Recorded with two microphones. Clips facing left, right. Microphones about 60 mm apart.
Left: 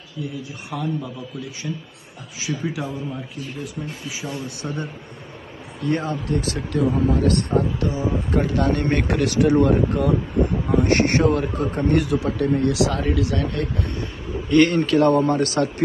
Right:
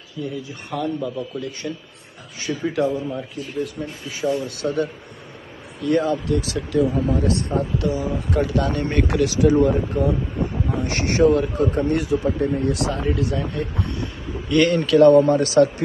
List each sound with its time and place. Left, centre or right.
0.2 s a man's voice: centre
2.4 s a man's voice: centre
4.2 s a man's voice: centre
4.6 s speech: left
5.9 s speech: left
7.5 s speech: left
12.4 s a man's voice: centre
13.2 s speech: left
13.9 s speech: left